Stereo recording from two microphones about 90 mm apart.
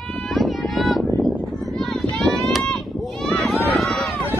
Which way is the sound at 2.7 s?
5° left (ahead or behind).